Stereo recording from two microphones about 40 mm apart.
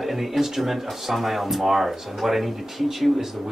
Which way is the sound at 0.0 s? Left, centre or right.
Centre.